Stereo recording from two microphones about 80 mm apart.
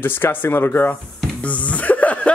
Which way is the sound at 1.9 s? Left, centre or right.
Centre.